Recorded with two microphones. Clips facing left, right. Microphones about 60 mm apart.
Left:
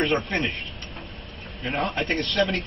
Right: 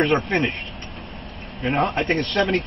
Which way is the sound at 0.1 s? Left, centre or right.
Centre.